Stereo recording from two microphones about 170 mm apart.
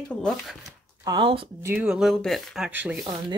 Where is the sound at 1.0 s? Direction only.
30° right (ahead or behind).